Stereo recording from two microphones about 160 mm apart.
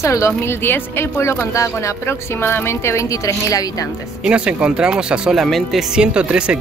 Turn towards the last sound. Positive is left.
turn(degrees=-5)  # may be behind; listen again after turning